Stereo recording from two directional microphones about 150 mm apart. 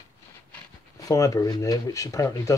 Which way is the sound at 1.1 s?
20° left (ahead or behind).